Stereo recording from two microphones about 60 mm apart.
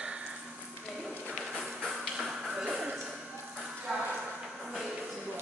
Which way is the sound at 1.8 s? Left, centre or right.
Centre.